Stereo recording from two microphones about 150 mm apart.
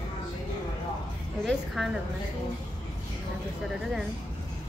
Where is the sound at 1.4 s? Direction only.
Centre (ahead or behind).